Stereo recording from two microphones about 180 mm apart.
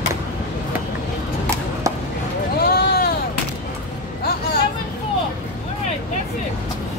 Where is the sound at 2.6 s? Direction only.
60° left (ahead or behind).